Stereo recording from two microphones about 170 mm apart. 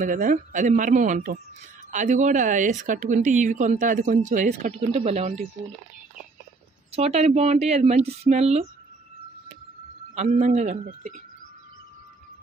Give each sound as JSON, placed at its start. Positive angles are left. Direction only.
{"t": 0.0, "sound": "speech", "side_deg": -50}
{"t": 6.9, "sound": "speech", "side_deg": -40}
{"t": 10.1, "sound": "speech", "side_deg": -40}